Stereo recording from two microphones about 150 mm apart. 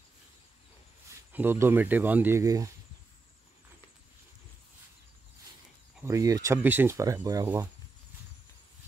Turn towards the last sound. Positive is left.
turn(degrees=-20)  # may be behind; listen again after turning